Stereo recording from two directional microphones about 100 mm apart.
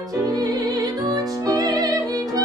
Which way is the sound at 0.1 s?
40° right (ahead or behind).